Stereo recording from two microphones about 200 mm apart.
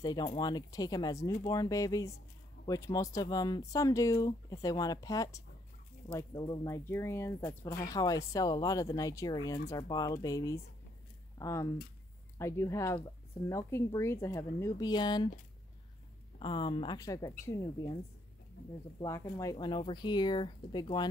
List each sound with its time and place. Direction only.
0.0 s speech: 20° left (ahead or behind)
16.3 s speech: 25° left (ahead or behind)
18.9 s speech: 15° left (ahead or behind)